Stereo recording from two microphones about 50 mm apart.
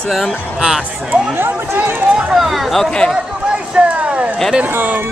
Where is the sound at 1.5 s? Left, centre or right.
Right.